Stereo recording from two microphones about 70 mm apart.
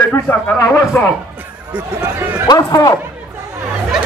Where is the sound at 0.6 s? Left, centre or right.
Left.